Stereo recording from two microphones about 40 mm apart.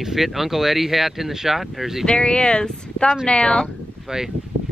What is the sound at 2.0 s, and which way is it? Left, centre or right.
Speech, left.